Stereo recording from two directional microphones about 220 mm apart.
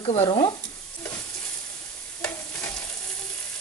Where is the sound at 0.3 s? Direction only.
20° left (ahead or behind).